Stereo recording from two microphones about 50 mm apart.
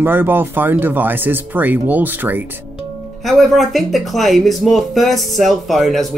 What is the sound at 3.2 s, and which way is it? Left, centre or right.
Speech, centre.